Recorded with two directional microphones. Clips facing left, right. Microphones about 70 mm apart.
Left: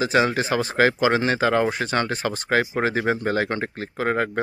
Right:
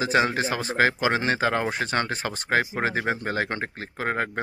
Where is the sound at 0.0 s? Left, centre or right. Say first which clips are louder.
Left 2 dB; right.